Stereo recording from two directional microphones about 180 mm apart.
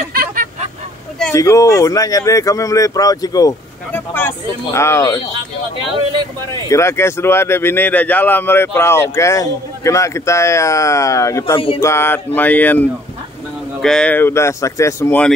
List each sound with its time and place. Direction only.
0.1 s hubbub: 55° right (ahead or behind)
1.3 s speech: 15° left (ahead or behind)
6.7 s speech: 15° left (ahead or behind)
11.8 s speech: 15° left (ahead or behind)